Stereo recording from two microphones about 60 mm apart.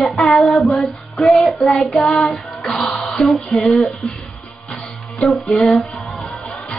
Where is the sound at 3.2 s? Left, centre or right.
Centre.